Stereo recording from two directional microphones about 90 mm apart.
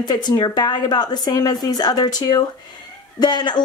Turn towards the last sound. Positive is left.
turn(degrees=55)  # may be behind; listen again after turning